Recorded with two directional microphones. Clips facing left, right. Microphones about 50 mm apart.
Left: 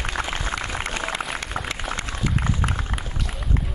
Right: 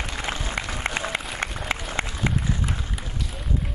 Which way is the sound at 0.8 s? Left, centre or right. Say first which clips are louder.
Right 1 dB; right.